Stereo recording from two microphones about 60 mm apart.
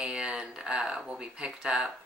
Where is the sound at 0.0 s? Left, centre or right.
Centre.